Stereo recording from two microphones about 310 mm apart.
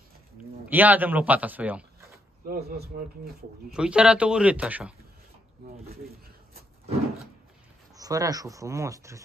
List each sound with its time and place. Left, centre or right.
0.7 s a man's voice: centre
2.4 s speech: right
3.7 s a man's voice: centre
7.9 s speech: centre